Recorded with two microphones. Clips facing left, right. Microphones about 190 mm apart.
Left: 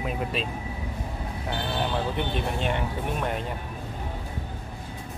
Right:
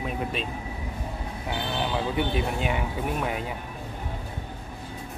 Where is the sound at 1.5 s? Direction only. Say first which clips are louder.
Even; 5° right (ahead or behind).